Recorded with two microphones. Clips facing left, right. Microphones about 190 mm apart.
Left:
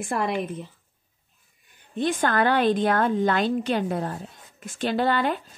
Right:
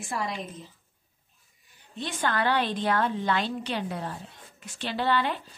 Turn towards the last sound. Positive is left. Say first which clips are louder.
# left 4 dB
turn(degrees=50)  # may be behind; listen again after turning